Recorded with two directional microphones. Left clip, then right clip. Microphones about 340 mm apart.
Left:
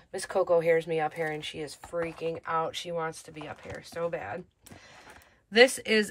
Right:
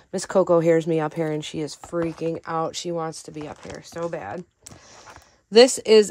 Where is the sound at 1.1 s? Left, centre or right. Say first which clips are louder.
Right 6 dB; right.